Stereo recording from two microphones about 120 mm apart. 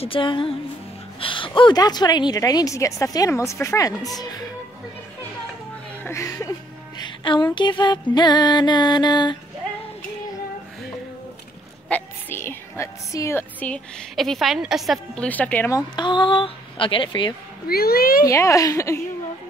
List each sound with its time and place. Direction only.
0.0 s a woman's voice: 45° left (ahead or behind); by 4.1 s 30° left (ahead or behind)
6.0 s speech: 25° left (ahead or behind)
7.0 s a woman's voice: 35° left (ahead or behind)
11.9 s speech: 20° left (ahead or behind)
14.1 s a woman's voice: centre (ahead or behind)
15.1 s a woman's voice: 10° left (ahead or behind)
15.7 s a woman's voice: 40° left (ahead or behind)
18.2 s speech: 25° left (ahead or behind)